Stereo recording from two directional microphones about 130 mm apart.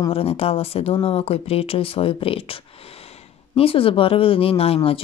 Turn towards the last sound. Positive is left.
turn(degrees=50)  # may be behind; listen again after turning